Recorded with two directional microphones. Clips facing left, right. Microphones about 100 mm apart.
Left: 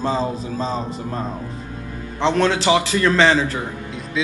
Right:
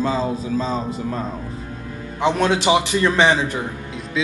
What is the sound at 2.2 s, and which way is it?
A man's voice, 10° right (ahead or behind).